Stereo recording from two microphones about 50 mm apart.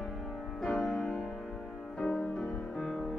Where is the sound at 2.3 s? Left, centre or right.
Left.